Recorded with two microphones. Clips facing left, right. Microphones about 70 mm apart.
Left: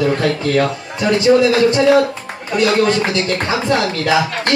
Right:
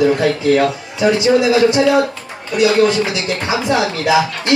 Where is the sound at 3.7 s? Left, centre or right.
Centre.